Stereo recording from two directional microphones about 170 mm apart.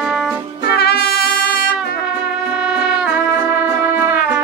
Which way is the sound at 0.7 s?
65° left (ahead or behind).